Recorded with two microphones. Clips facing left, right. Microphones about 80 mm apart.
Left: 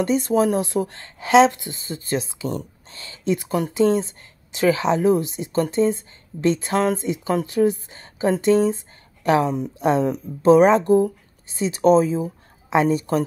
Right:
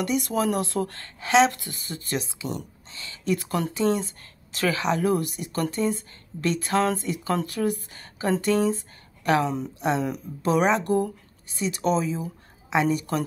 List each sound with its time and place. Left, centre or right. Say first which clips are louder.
0.0 s speech: left 6 dB; left
9.8 s speech: left 7 dB; left
12.6 s a woman's voice: left 4 dB; left